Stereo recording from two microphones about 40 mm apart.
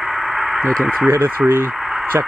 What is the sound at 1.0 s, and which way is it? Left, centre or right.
Speech, right.